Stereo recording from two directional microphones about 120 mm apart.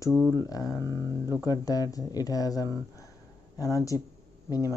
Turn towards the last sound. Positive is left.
turn(degrees=30)  # may be behind; listen again after turning